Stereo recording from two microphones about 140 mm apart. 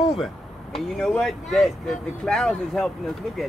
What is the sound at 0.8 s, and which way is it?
Speech, centre (ahead or behind).